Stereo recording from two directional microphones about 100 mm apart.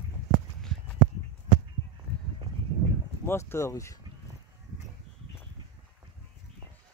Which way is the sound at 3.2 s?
25° left (ahead or behind).